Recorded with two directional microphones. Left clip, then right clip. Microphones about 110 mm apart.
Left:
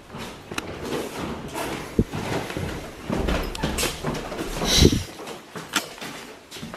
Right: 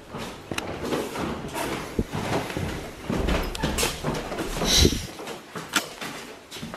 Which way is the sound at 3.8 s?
20° left (ahead or behind).